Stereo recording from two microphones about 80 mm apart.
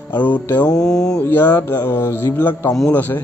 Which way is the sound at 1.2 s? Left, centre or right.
Left.